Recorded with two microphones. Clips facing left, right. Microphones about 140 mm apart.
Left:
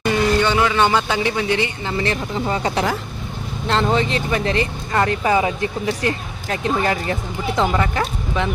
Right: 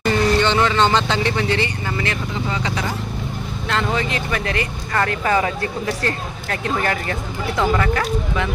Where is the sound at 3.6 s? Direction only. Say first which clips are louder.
Left 4 dB; 30° left (ahead or behind).